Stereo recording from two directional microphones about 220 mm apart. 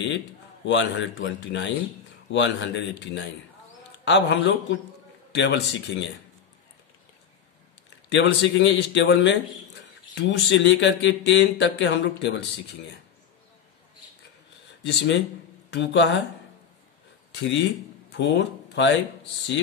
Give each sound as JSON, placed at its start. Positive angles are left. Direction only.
{"t": 0.7, "sound": "a man's voice", "side_deg": 55}
{"t": 8.1, "sound": "a man's voice", "side_deg": 55}
{"t": 14.9, "sound": "a man's voice", "side_deg": 55}
{"t": 17.3, "sound": "speech", "side_deg": 50}